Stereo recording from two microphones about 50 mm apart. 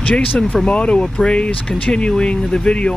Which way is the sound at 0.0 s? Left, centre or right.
Centre.